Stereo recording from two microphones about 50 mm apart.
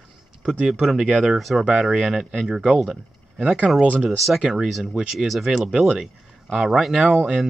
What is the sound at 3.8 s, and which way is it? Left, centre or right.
Speech, right.